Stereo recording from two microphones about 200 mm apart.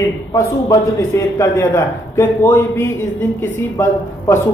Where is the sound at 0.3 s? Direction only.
15° left (ahead or behind).